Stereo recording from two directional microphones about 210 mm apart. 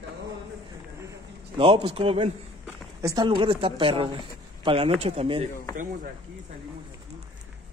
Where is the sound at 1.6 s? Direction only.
25° right (ahead or behind).